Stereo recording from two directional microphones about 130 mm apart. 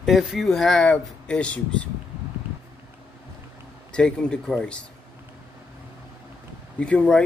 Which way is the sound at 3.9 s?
5° left (ahead or behind).